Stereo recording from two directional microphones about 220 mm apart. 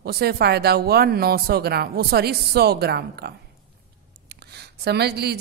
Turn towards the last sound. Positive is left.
turn(degrees=-45)  # may be behind; listen again after turning